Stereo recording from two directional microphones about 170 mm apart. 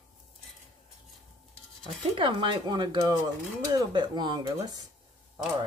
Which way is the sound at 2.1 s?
30° right (ahead or behind).